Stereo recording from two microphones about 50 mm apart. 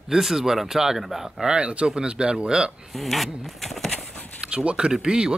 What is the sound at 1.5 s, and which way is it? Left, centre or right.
Speech, right.